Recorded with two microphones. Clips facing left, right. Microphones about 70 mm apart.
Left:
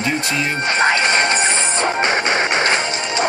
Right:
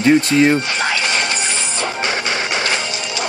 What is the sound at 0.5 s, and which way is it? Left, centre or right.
Music, left.